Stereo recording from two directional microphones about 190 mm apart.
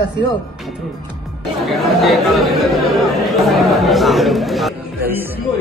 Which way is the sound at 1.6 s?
Centre (ahead or behind).